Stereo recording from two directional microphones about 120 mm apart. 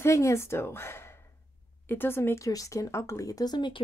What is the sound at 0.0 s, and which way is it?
A woman's voice, 25° left (ahead or behind).